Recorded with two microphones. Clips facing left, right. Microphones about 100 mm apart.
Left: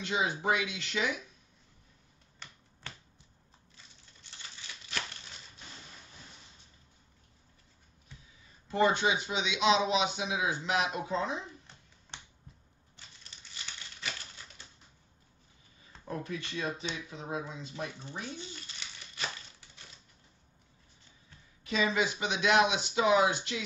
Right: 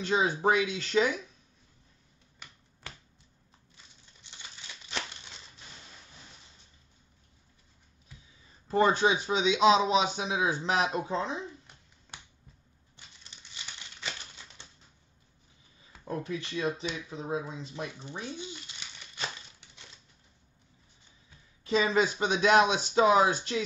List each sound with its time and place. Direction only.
0.0 s a man's voice: 35° right (ahead or behind)
4.2 s typewriter: 20° right (ahead or behind)
8.6 s a man's voice: 35° right (ahead or behind)
16.1 s speech: 25° right (ahead or behind)
19.1 s crumpling: 25° right (ahead or behind)
21.6 s a man's voice: 35° right (ahead or behind)